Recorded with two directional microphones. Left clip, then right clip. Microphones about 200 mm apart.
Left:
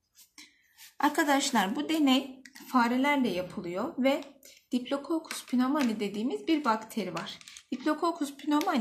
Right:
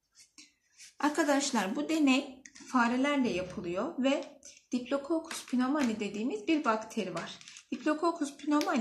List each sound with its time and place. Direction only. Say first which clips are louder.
0.9 s speech: left 3 dB; 40° left (ahead or behind)